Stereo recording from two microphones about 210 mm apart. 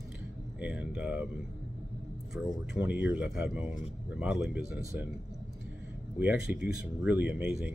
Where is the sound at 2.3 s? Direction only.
10° right (ahead or behind).